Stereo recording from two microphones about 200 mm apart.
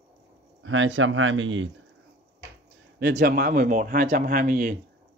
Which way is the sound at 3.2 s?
50° right (ahead or behind).